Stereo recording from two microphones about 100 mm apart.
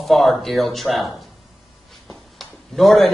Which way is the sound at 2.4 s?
Centre (ahead or behind).